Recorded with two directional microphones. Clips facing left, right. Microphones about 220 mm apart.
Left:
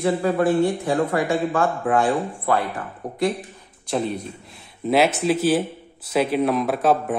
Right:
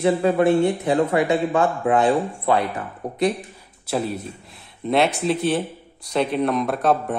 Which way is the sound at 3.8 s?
5° right (ahead or behind).